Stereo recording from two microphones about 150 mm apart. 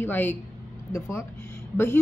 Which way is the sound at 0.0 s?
15° left (ahead or behind).